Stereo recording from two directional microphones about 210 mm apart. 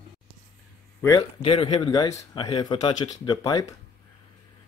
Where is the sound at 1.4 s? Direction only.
25° left (ahead or behind).